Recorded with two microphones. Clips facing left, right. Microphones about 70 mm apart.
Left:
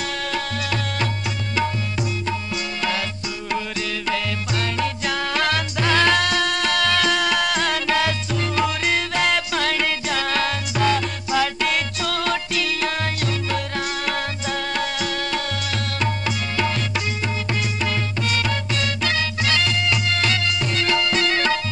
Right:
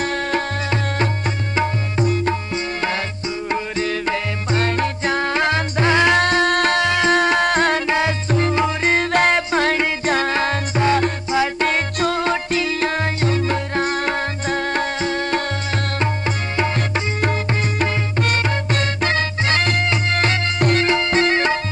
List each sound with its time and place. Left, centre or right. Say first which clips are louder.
0.0 s music: right 5 dB; right
1.5 s tabla: right 1 dB; right
3.4 s music: right 4 dB; right
6.2 s tabla: right 5 dB; right
6.8 s music: right 4 dB; right
16.0 s tabla: right 2 dB; right
18.2 s music: right 4 dB; right